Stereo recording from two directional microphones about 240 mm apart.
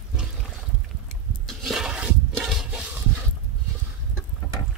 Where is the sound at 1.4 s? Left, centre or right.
Centre.